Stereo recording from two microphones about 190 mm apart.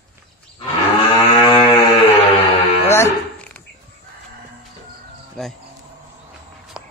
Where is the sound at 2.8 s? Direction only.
15° left (ahead or behind).